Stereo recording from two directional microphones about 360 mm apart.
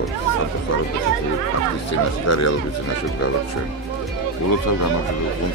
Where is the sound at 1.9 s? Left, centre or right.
Left.